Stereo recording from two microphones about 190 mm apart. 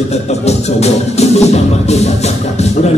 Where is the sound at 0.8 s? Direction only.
35° left (ahead or behind).